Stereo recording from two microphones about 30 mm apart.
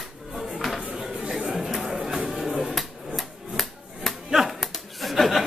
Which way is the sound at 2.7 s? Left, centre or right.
Centre.